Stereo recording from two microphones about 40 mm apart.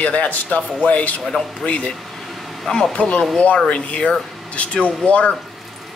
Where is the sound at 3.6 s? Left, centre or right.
Left.